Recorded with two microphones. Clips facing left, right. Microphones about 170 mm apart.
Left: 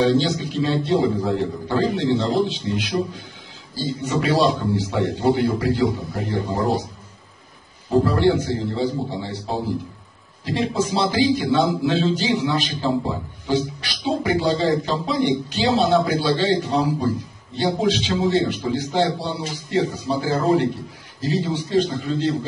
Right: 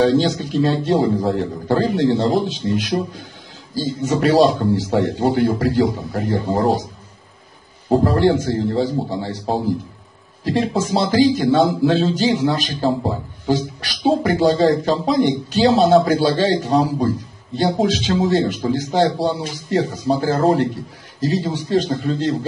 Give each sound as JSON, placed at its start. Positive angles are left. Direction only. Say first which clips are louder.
{"t": 0.0, "sound": "speech", "louder": "right 3 dB", "side_deg": -45}
{"t": 8.0, "sound": "speech", "louder": "right 1 dB", "side_deg": -45}
{"t": 10.4, "sound": "speech", "louder": "right 3 dB", "side_deg": -45}